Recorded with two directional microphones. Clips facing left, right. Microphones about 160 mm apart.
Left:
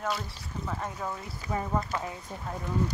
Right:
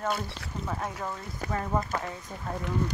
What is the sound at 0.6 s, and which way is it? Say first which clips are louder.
Speech: right 1 dB; centre (ahead or behind).